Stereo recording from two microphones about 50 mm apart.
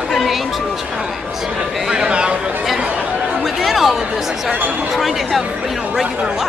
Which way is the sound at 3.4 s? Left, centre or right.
Centre.